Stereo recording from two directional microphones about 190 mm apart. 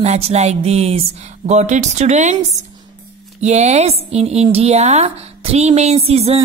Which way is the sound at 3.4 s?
35° right (ahead or behind).